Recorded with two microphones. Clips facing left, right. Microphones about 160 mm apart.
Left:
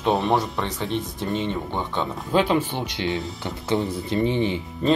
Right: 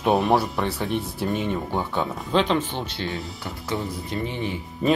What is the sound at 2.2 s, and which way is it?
Speech, 10° left (ahead or behind).